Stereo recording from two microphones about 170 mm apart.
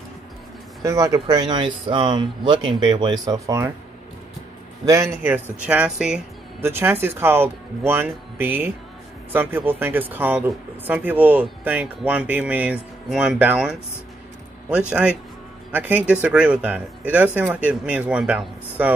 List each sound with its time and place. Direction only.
0.8 s speech: 20° right (ahead or behind)
4.8 s speech: 20° right (ahead or behind)
14.9 s a man's voice: 5° right (ahead or behind)